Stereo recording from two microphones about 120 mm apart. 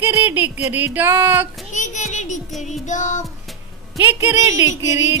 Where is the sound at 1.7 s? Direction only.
85° left.